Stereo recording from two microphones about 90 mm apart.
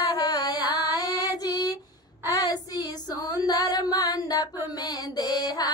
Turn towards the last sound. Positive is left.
turn(degrees=45)  # may be behind; listen again after turning